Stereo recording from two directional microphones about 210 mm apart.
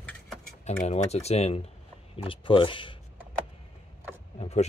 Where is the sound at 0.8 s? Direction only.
30° left (ahead or behind).